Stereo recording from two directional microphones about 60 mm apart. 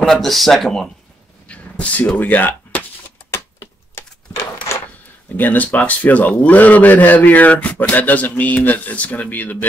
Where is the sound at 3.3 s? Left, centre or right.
Left.